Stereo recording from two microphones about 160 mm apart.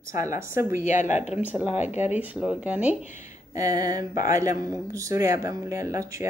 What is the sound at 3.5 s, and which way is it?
Speech, 20° right (ahead or behind).